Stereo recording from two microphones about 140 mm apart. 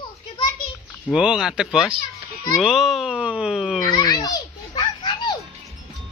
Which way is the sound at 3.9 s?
30° left (ahead or behind).